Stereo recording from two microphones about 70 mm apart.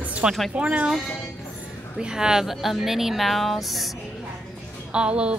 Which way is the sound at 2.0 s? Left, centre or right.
Centre.